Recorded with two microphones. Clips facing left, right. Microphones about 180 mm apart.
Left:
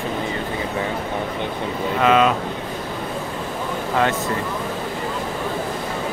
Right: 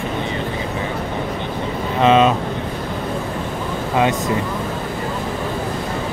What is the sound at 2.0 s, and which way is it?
Speech, 25° right (ahead or behind).